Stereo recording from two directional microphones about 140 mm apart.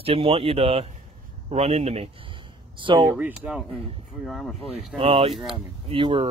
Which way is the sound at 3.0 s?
15° right (ahead or behind).